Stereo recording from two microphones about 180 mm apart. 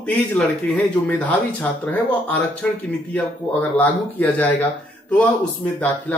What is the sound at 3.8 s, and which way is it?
Speech, 10° left (ahead or behind).